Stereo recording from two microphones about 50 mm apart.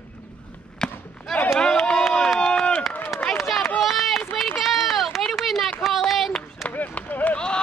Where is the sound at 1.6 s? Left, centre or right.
Centre.